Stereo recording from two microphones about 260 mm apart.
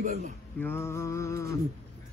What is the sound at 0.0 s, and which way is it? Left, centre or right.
Speech, right.